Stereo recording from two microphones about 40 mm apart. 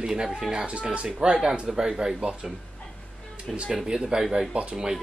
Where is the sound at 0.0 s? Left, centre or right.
Centre.